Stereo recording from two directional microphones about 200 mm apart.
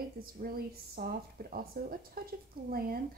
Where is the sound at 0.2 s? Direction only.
45° right (ahead or behind).